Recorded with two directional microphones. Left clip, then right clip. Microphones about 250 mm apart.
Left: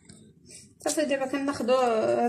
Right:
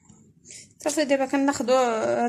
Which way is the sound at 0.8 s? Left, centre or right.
Right.